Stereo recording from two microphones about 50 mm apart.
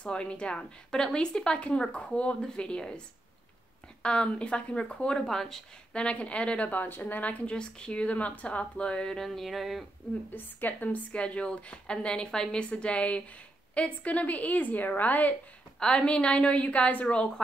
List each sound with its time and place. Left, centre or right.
0.0 s a woman's voice: left
4.0 s speech: left
5.2 s a woman's voice: centre
5.9 s speech: left
6.7 s a woman's voice: left
7.5 s speech: centre
9.2 s a sound: centre
10.3 s a woman's voice: left
11.1 s a woman's voice: left
15.8 s speech: centre